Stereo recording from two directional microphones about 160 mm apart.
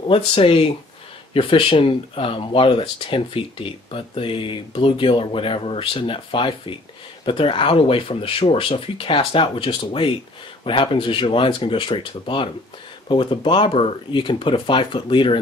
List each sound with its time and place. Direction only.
0.1 s speech: 35° left (ahead or behind)